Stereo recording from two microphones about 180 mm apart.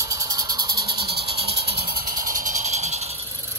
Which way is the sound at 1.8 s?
50° right (ahead or behind).